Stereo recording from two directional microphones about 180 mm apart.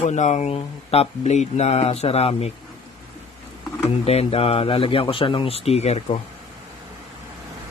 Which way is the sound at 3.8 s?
35° left (ahead or behind).